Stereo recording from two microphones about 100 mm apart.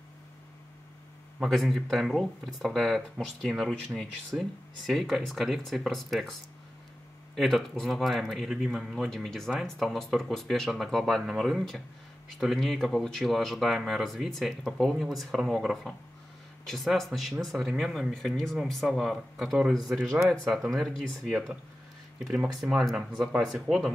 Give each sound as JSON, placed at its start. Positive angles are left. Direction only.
{"t": 1.4, "sound": "speech", "side_deg": 0}
{"t": 7.3, "sound": "speech", "side_deg": 0}
{"t": 22.2, "sound": "speech", "side_deg": -15}